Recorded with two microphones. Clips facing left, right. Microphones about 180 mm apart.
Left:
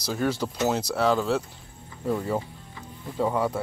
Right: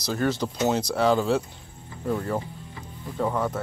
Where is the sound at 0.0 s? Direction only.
5° left (ahead or behind).